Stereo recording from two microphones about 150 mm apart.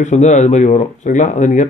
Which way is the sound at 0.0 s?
50° left (ahead or behind).